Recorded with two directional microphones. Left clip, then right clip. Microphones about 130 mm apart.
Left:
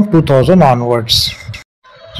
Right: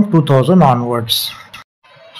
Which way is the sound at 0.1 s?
20° left (ahead or behind).